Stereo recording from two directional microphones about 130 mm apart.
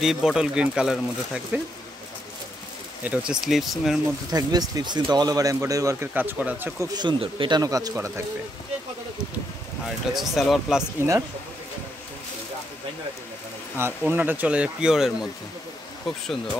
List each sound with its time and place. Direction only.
0.0 s speech: 5° right (ahead or behind)
3.0 s speech: 10° right (ahead or behind)
4.3 s speech: 30° right (ahead or behind); by 6.7 s 15° right (ahead or behind)
6.8 s speech: 30° right (ahead or behind)
9.8 s speech: centre (ahead or behind)
11.0 s speech: 20° right (ahead or behind)
13.7 s speech: 15° right (ahead or behind)